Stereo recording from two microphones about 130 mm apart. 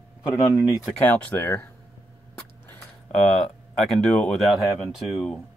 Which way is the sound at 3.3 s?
5° left (ahead or behind).